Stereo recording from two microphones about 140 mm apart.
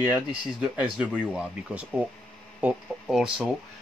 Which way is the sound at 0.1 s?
5° right (ahead or behind).